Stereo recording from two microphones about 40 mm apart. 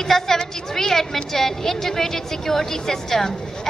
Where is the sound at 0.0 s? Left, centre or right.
Centre.